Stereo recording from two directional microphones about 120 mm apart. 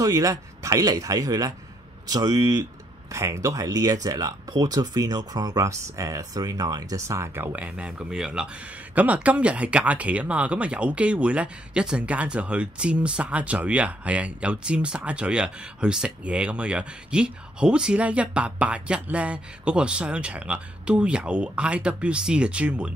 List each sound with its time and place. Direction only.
0.0 s speech: 30° right (ahead or behind)
7.5 s speech: 10° right (ahead or behind)